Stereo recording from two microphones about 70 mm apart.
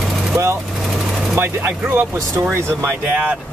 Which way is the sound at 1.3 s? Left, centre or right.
Right.